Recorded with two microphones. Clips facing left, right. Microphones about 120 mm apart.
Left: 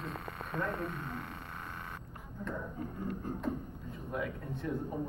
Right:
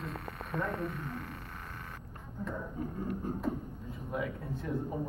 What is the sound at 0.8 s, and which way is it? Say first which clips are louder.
Speech: right 1 dB; 25° left (ahead or behind).